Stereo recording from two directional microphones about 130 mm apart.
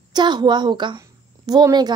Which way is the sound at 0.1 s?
35° right (ahead or behind).